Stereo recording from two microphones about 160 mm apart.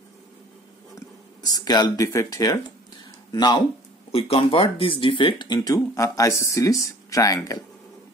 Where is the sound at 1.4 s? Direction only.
25° left (ahead or behind).